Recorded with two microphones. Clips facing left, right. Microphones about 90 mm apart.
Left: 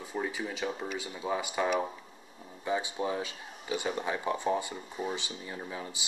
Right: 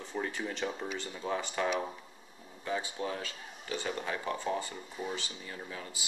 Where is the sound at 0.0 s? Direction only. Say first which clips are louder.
Left 2 dB; 5° left (ahead or behind).